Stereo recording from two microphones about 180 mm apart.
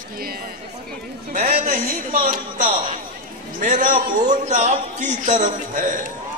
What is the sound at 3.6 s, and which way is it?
A man's voice, 45° right (ahead or behind).